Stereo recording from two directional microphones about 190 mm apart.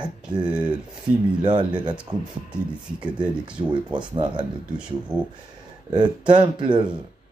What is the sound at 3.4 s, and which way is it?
Speech, 25° right (ahead or behind).